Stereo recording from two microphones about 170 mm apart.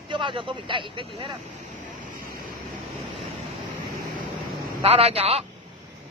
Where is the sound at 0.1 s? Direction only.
30° right (ahead or behind).